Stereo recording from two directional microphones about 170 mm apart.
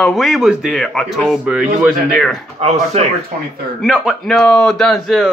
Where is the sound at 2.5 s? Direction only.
40° right (ahead or behind).